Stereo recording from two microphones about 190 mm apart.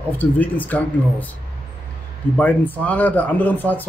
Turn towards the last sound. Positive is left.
turn(degrees=10)  # may be behind; listen again after turning